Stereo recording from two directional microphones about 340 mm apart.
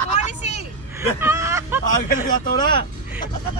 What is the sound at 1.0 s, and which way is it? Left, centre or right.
Speech, centre.